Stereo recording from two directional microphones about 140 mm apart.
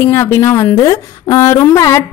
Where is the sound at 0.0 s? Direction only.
15° left (ahead or behind).